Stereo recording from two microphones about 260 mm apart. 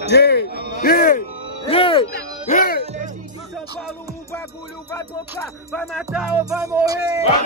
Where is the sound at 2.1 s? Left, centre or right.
Left.